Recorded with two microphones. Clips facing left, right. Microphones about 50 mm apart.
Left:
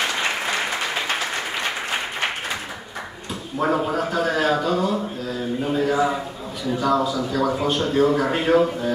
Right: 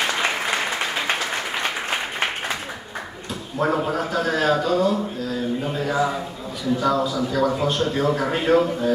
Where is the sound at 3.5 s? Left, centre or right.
Centre.